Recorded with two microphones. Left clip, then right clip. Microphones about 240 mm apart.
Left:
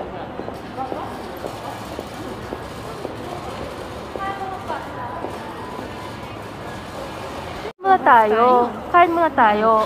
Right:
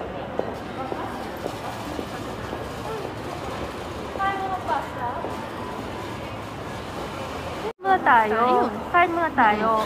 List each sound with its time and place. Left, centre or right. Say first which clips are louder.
7.8 s a woman's voice: left 5 dB; left